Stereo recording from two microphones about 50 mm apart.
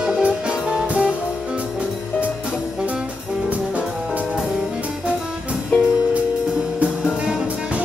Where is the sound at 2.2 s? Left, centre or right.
Right.